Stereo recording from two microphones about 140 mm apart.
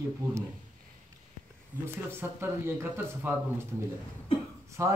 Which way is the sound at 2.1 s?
15° right (ahead or behind).